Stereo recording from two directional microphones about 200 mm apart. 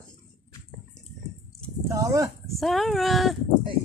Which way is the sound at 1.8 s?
15° right (ahead or behind).